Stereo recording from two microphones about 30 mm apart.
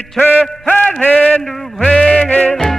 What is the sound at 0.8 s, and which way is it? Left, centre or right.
Speech, left.